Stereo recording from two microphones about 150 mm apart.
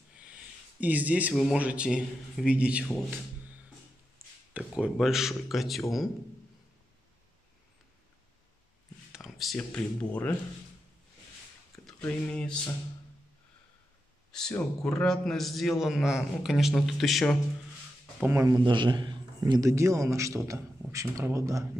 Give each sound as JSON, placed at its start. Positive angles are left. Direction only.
{"t": 0.7, "sound": "speech", "side_deg": -10}
{"t": 4.2, "sound": "a sound", "side_deg": -15}
{"t": 4.6, "sound": "a man's voice", "side_deg": -5}
{"t": 9.1, "sound": "speech", "side_deg": 0}
{"t": 12.0, "sound": "speech", "side_deg": 10}
{"t": 14.8, "sound": "a man's voice", "side_deg": 5}
{"t": 18.2, "sound": "speech", "side_deg": -15}
{"t": 18.6, "sound": "a man's voice", "side_deg": -30}